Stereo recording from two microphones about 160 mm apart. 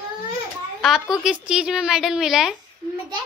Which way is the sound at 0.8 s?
Centre (ahead or behind).